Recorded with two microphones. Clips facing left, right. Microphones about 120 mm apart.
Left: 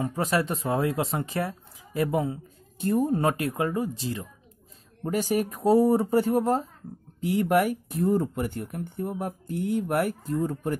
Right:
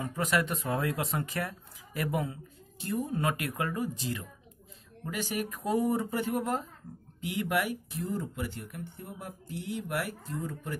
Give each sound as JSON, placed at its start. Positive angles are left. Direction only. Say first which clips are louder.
{"t": 0.0, "sound": "speech", "louder": "left 4 dB", "side_deg": 30}
{"t": 2.8, "sound": "speech", "louder": "left 9 dB", "side_deg": 50}
{"t": 3.2, "sound": "speech", "louder": "left 6 dB", "side_deg": 30}